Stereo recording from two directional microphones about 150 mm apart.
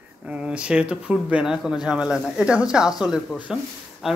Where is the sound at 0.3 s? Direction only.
5° right (ahead or behind).